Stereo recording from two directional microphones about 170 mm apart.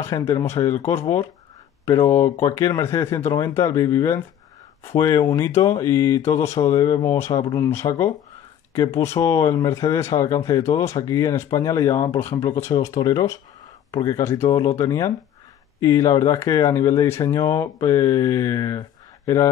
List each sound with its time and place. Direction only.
0.0 s speech: 20° left (ahead or behind)
2.4 s speech: 20° left (ahead or behind)